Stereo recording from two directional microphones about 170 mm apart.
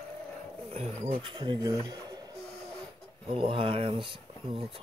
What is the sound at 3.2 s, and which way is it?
Speech, 30° right (ahead or behind).